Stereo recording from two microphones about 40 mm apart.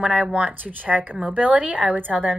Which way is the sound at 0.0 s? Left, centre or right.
Right.